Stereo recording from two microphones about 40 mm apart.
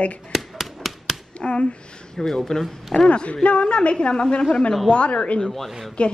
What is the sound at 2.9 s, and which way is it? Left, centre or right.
A woman's voice, left.